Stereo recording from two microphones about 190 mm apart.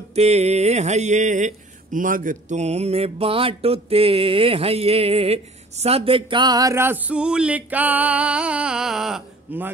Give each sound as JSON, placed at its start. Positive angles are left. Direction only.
{"t": 0.1, "sound": "mantra", "side_deg": -35}